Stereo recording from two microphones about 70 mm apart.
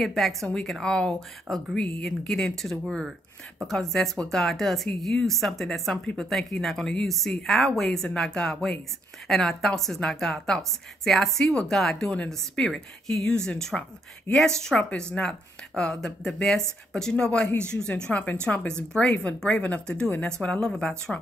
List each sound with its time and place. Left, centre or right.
0.0 s a woman's voice: centre